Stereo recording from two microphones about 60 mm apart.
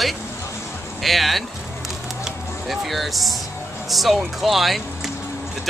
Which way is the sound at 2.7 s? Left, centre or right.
Centre.